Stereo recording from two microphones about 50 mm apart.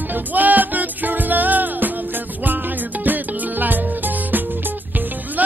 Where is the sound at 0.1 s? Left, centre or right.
Right.